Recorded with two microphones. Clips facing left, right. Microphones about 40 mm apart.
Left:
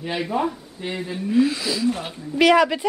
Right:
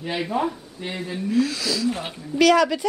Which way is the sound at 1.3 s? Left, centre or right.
Centre.